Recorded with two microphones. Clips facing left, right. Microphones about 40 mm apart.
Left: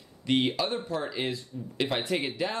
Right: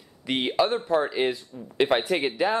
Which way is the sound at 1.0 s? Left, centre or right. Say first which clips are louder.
Right 6 dB; right.